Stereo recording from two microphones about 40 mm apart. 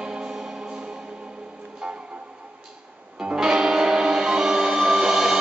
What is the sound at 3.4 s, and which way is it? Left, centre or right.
Music, centre.